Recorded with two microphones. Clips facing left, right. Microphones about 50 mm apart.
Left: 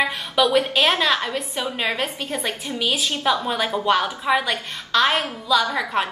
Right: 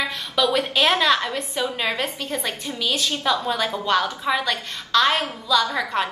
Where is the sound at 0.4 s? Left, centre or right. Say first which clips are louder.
Left 2 dB; centre.